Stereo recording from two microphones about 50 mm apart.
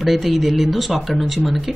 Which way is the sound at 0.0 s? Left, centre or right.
Centre.